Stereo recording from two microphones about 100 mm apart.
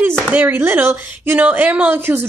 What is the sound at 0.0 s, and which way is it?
A woman's voice, 20° right (ahead or behind).